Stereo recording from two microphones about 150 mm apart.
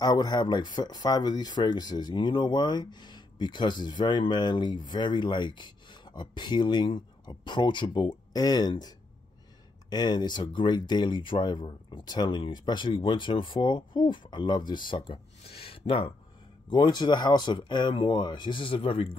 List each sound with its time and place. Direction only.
0.0 s speech: 25° left (ahead or behind)